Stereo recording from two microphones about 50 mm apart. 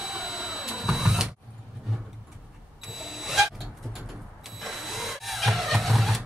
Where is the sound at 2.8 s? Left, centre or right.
Centre.